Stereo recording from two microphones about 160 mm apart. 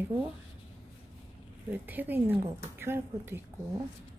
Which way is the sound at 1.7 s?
10° right (ahead or behind).